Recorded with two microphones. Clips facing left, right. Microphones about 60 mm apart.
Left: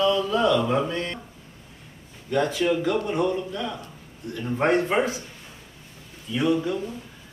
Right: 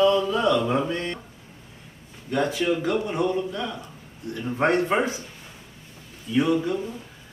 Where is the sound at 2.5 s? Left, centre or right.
Centre.